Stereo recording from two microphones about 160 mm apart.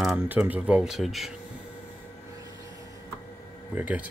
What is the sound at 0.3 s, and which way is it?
Speech, 10° right (ahead or behind).